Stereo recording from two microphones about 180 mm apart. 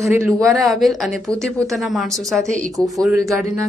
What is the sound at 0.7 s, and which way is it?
Speech, centre (ahead or behind).